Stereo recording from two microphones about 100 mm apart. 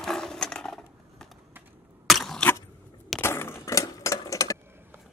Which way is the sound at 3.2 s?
25° left (ahead or behind).